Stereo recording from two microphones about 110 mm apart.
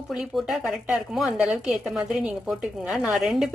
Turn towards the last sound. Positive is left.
turn(degrees=0)  # may be behind; listen again after turning